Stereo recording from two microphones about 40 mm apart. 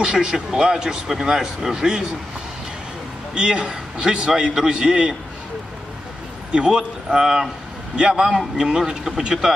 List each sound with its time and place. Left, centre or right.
0.0 s a man's voice: right
3.3 s a man's voice: right
6.5 s a man's voice: centre